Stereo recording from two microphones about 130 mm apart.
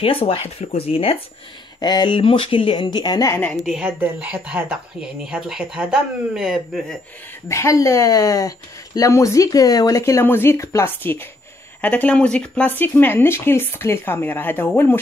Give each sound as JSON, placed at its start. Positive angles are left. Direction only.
{"t": 0.0, "sound": "speech", "side_deg": 45}
{"t": 1.8, "sound": "speech", "side_deg": 35}
{"t": 3.5, "sound": "speech", "side_deg": -5}
{"t": 7.4, "sound": "speech", "side_deg": 20}